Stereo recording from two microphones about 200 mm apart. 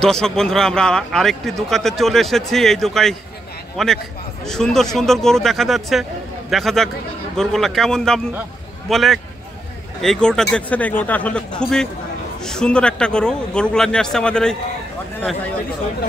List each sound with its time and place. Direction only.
0.0 s a man's voice: 5° left (ahead or behind)